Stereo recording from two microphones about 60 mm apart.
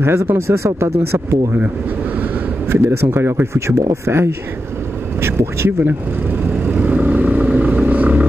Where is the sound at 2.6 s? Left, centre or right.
Right.